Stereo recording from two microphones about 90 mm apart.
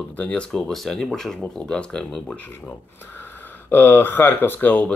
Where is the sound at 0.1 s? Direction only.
10° left (ahead or behind).